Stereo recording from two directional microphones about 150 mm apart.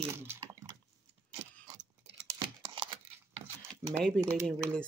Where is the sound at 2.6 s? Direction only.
35° right (ahead or behind).